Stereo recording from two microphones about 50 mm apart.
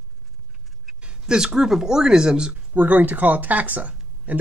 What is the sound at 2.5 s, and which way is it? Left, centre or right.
Speech, right.